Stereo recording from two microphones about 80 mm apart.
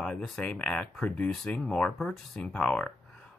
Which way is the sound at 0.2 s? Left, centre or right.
Centre.